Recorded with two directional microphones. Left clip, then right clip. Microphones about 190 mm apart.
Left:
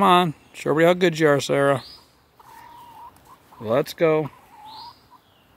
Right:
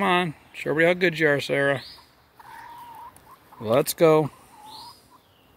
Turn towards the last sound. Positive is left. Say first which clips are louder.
# right 2 dB
turn(degrees=-20)  # may be behind; listen again after turning